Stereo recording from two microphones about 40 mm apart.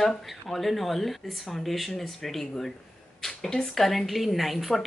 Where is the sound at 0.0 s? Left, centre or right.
Centre.